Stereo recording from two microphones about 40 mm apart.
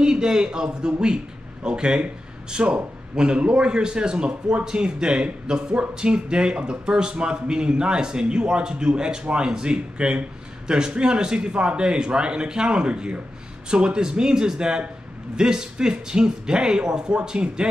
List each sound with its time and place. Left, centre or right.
0.0 s a man's voice: centre